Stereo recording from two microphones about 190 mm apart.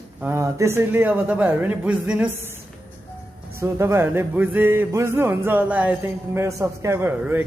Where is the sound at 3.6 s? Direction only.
15° right (ahead or behind).